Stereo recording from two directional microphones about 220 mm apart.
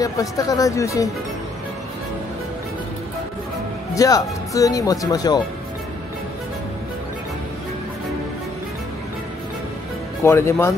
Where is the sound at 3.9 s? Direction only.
15° left (ahead or behind).